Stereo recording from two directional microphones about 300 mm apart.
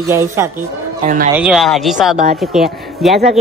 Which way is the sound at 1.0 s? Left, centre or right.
Right.